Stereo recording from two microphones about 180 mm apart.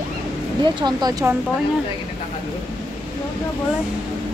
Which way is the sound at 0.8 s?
25° right (ahead or behind).